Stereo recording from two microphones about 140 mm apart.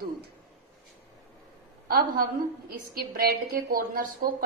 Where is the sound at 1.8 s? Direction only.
90° right.